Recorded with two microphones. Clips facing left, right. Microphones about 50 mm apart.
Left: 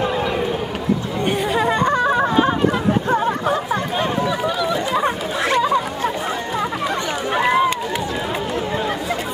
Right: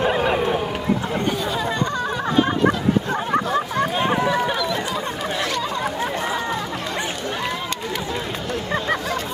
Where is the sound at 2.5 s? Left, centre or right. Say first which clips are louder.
Left 1 dB; left.